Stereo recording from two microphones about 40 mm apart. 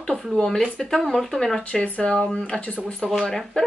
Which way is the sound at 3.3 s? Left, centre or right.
Centre.